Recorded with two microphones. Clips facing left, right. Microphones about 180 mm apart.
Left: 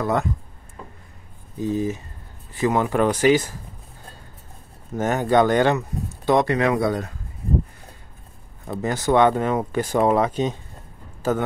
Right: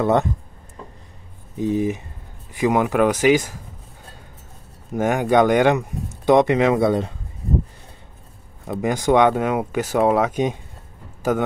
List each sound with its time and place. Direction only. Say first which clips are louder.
0.0 s speech: right 4 dB; 25° right (ahead or behind)
1.6 s speech: right 3 dB; 20° right (ahead or behind)
4.9 s speech: right 2 dB; 10° right (ahead or behind)
8.6 s speech: right 3 dB; 15° right (ahead or behind)